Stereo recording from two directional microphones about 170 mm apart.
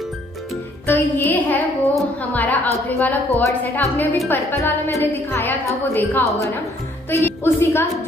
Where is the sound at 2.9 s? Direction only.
10° left (ahead or behind).